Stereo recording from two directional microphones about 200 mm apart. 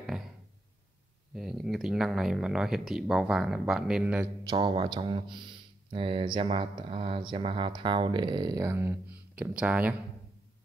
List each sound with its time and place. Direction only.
1.3 s speech: centre (ahead or behind)
4.5 s speech: 25° right (ahead or behind); by 9.9 s 5° right (ahead or behind)